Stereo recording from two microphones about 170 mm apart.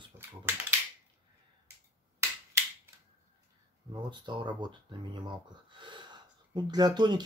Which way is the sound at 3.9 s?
25° right (ahead or behind).